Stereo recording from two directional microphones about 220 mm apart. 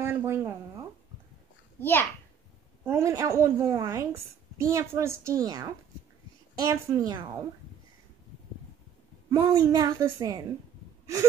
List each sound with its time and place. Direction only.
0.0 s a woman's voice: 10° right (ahead or behind)
1.8 s a child's voice: 10° left (ahead or behind)
2.8 s a woman's voice: 10° right (ahead or behind)
9.3 s a woman's voice: 15° right (ahead or behind)